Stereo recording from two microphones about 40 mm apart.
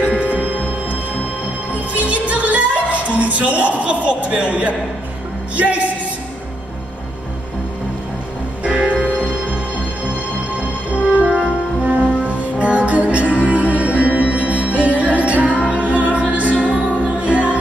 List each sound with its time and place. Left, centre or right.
0.2 s music: right
5.6 s speech: right
8.6 s music: right
10.9 s music: right
11.2 s music: right
11.8 s music: right